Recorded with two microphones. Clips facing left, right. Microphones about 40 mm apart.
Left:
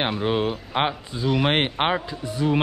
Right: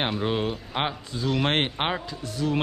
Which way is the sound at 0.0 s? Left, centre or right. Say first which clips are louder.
Left 3 dB; centre.